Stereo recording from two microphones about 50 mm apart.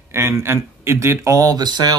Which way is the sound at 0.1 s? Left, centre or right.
Right.